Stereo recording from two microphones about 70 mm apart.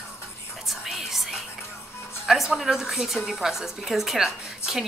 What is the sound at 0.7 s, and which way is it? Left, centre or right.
Whispering, centre.